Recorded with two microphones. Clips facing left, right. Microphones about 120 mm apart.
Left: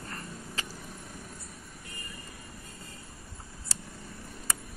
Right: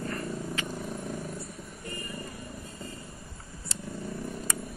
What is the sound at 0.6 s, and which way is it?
Vehicle, 35° left (ahead or behind).